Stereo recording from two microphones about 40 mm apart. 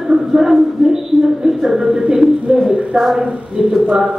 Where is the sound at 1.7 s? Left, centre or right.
Right.